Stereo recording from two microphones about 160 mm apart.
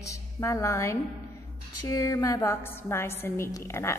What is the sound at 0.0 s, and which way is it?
A woman's voice, 20° left (ahead or behind).